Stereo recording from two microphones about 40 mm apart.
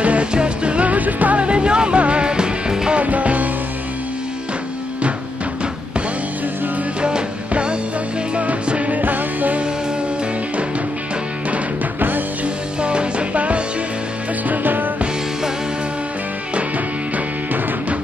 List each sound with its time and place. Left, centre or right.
0.0 s music: right
1.4 s music: right
3.0 s music: right
7.0 s music: right
9.0 s music: right
12.8 s music: right
14.5 s music: right